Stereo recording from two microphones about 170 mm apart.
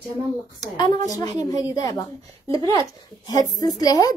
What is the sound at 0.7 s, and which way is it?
A woman's voice, 20° left (ahead or behind).